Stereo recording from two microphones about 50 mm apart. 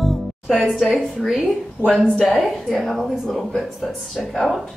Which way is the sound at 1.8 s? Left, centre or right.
Left.